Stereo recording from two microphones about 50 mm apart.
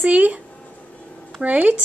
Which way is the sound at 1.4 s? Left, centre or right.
Right.